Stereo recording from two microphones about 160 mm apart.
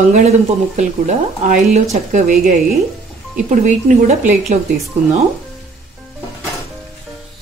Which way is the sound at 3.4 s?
50° right (ahead or behind).